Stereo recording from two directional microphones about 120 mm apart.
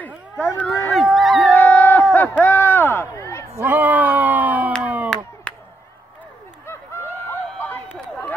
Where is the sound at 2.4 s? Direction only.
15° left (ahead or behind).